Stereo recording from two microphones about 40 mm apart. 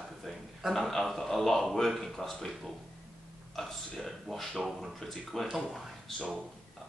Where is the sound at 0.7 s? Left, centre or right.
Centre.